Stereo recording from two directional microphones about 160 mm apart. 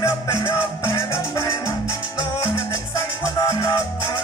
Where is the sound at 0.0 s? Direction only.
20° left (ahead or behind).